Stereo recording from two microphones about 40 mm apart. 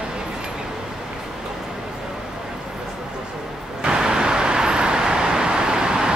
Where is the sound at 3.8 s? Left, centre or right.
Centre.